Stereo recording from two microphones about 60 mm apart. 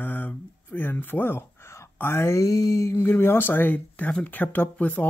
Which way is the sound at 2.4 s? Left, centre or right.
Left.